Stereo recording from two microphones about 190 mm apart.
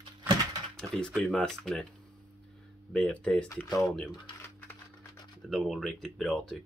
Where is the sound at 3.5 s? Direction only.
15° left (ahead or behind).